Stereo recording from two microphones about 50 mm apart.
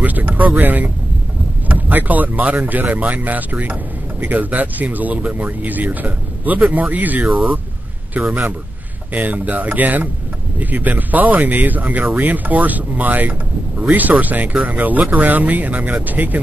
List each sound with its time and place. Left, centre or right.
0.0 s vehicle: right
1.7 s a man's voice: right